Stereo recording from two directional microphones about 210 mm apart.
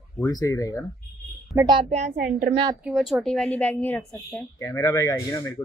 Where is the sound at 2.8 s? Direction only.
Centre (ahead or behind).